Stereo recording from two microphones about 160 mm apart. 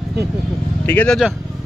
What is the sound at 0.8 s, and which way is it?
Speech, 10° left (ahead or behind).